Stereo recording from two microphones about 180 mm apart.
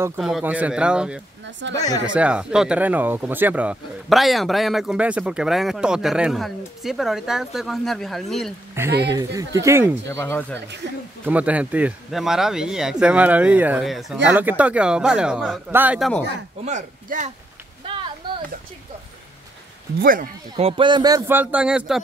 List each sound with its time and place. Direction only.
0.2 s speech: 5° right (ahead or behind)
1.7 s speech: 20° left (ahead or behind)
2.1 s speech: 5° right (ahead or behind)
8.9 s speech: 70° right (ahead or behind)
9.2 s a man's voice: 15° right (ahead or behind)
10.0 s speech: 15° left (ahead or behind)
11.2 s a man's voice: 10° right (ahead or behind)
16.6 s speech: 40° right (ahead or behind)
17.8 s a sound: 30° right (ahead or behind)
20.0 s speech: 50° right (ahead or behind)
20.5 s a man's voice: 30° right (ahead or behind); by 22.0 s 5° right (ahead or behind)